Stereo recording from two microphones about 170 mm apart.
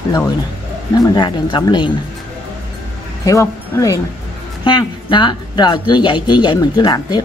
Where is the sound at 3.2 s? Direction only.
20° left (ahead or behind).